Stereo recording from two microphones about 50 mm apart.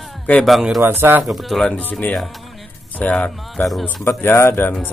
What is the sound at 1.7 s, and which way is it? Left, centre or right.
Speech, left.